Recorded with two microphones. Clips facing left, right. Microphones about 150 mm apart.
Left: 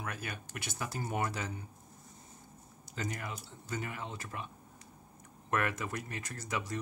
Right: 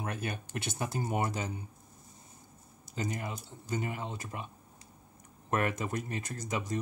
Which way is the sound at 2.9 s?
20° right (ahead or behind).